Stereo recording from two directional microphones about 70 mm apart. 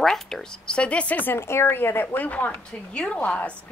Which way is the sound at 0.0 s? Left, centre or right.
Centre.